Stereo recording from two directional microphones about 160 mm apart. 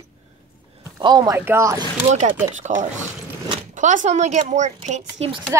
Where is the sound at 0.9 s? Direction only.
25° right (ahead or behind).